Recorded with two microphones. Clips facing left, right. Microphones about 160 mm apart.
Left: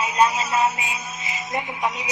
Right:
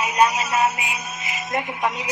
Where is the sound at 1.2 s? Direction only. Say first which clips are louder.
Right 1 dB; 20° left (ahead or behind).